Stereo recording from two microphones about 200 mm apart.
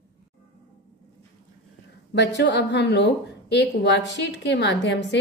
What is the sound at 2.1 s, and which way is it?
A woman's voice, 60° left (ahead or behind).